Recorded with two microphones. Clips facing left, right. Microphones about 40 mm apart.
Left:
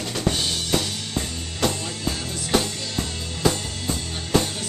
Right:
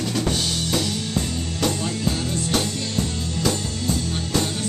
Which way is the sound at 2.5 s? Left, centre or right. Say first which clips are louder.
Left 3 dB; centre.